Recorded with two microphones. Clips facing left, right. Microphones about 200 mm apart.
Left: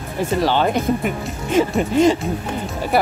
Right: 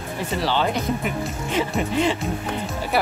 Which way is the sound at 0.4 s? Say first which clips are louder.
Left 4 dB; 50° left (ahead or behind).